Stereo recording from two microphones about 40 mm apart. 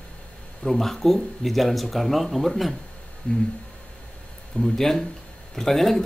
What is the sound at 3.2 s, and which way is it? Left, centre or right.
Speech, left.